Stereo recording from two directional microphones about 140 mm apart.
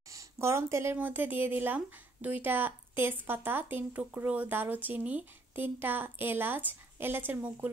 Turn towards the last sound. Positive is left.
turn(degrees=-15)  # may be behind; listen again after turning